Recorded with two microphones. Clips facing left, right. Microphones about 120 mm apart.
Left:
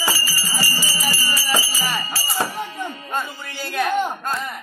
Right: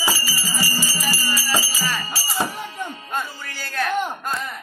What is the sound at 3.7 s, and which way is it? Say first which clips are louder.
Speech: left 2 dB; 10° left (ahead or behind).